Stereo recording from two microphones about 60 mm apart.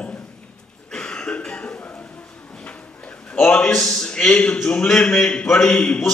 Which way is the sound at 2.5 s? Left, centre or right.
Centre.